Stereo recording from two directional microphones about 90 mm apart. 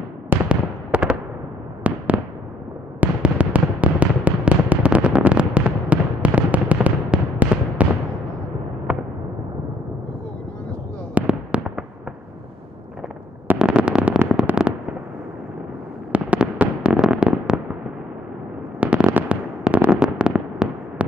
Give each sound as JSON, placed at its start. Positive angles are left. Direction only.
{"t": 0.3, "sound": "fireworks", "side_deg": -15}
{"t": 3.0, "sound": "music", "side_deg": -15}
{"t": 11.1, "sound": "fireworks", "side_deg": -15}
{"t": 13.6, "sound": "fireworks", "side_deg": -10}
{"t": 16.1, "sound": "fireworks", "side_deg": -15}
{"t": 18.8, "sound": "fireworks", "side_deg": -15}